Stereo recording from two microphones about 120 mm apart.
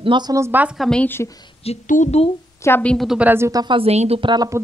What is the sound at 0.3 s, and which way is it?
Speech, 20° right (ahead or behind).